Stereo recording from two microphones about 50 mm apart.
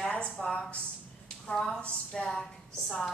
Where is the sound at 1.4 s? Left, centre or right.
Centre.